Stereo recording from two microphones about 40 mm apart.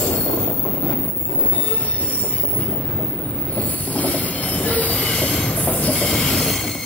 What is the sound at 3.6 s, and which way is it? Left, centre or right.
Train wheels squealing, left.